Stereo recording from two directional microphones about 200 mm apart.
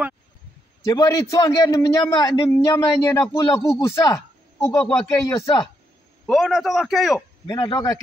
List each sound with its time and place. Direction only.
0.8 s a man's voice: 15° left (ahead or behind)
6.2 s a man's voice: centre (ahead or behind)
7.4 s a man's voice: 20° left (ahead or behind)